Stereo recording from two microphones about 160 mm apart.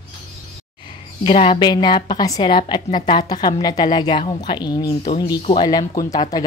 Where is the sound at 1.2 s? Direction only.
35° left (ahead or behind).